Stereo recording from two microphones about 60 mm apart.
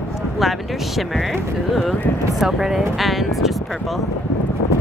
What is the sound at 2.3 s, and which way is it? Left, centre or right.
Speech, centre.